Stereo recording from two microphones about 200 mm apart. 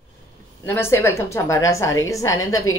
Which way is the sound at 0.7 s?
10° left (ahead or behind).